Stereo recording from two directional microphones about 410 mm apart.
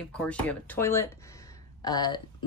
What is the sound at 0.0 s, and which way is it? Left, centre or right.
Speech, centre.